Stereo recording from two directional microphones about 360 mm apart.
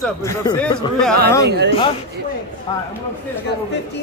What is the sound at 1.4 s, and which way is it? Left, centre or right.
Speech, right.